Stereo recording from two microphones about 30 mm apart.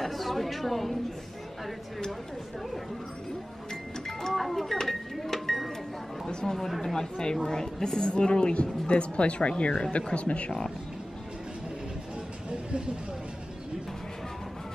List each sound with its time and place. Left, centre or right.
0.0 s a woman's voice: centre
4.3 s a woman's voice: centre; by 9.9 s left
10.1 s speech: left
12.4 s a sound: right